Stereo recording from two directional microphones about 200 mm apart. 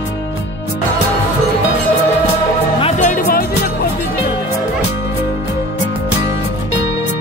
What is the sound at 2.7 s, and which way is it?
Music, 35° left (ahead or behind).